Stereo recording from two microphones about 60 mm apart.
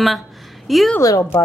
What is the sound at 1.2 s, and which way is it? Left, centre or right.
Speech, left.